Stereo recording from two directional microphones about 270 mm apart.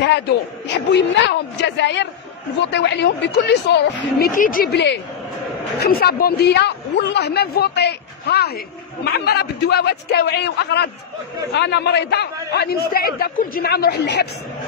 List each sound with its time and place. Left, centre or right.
0.9 s a man's voice: left